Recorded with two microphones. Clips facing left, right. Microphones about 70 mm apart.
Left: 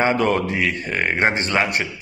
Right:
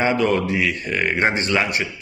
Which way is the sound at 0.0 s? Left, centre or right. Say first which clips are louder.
Even; left.